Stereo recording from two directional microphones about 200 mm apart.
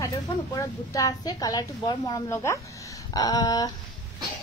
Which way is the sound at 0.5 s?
15° left (ahead or behind).